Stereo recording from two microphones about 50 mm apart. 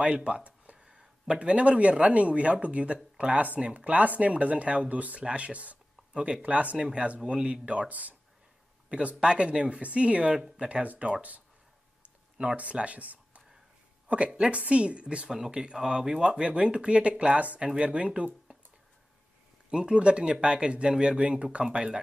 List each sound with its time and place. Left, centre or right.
0.0 s speech: right
8.8 s speech: right
10.3 s speech: centre
10.7 s speech: right
19.7 s speech: centre